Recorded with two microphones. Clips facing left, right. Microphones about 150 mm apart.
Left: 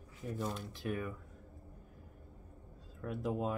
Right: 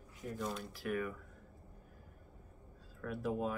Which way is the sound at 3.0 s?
20° left (ahead or behind).